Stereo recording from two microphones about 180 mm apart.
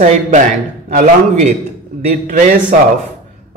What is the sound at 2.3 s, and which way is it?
Speech, 50° right (ahead or behind).